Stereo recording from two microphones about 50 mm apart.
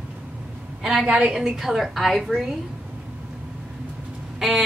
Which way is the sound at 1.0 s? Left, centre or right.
Right.